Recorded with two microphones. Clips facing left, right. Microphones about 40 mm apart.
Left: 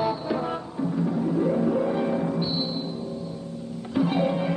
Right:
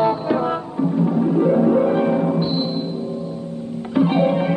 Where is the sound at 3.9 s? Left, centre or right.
Right.